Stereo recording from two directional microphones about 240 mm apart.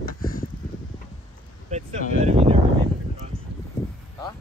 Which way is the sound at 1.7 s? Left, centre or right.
Right.